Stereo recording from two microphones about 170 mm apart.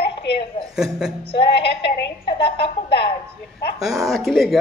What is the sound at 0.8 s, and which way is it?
Speech, 5° right (ahead or behind).